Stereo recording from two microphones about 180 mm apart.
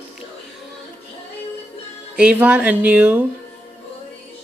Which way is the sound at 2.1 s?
5° right (ahead or behind).